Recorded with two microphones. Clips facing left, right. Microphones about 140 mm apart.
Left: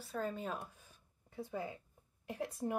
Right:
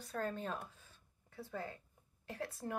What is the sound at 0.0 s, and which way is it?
Speech, 5° left (ahead or behind).